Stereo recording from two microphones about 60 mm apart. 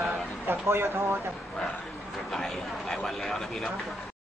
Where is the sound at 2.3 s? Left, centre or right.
Centre.